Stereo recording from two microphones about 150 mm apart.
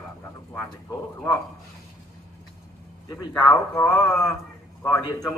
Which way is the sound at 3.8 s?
10° left (ahead or behind).